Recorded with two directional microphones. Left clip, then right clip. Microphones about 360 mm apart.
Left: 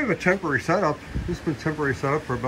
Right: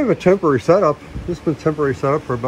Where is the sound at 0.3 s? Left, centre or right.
Centre.